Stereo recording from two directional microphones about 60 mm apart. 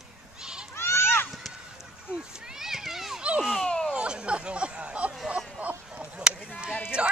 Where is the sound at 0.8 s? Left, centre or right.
Left.